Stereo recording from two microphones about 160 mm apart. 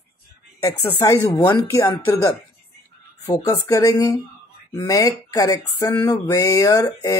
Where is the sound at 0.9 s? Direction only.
20° left (ahead or behind).